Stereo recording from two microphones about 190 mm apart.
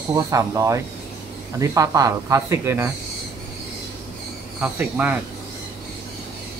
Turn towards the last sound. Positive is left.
turn(degrees=-10)  # may be behind; listen again after turning